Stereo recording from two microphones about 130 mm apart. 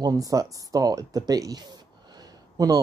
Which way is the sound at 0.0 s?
25° right (ahead or behind).